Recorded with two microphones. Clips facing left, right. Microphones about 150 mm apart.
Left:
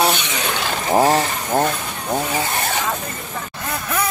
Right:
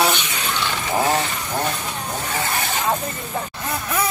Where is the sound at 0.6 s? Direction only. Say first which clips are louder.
Left 5 dB; 40° left (ahead or behind).